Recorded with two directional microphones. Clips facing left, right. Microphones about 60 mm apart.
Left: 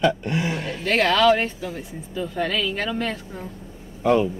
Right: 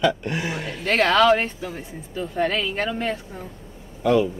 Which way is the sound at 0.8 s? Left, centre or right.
Right.